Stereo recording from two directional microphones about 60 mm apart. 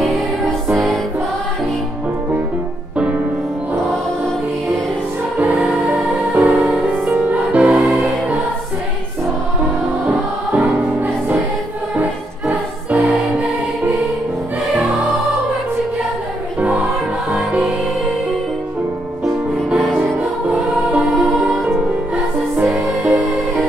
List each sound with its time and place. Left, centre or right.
5.5 s music: centre
5.9 s music: right
6.5 s music: centre
6.9 s music: centre
7.7 s music: centre
10.5 s music: right
13.0 s music: centre
17.3 s music: centre
22.7 s music: centre